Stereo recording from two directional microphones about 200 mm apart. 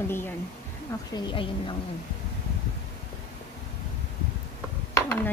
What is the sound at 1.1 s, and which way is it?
Speech, 25° left (ahead or behind).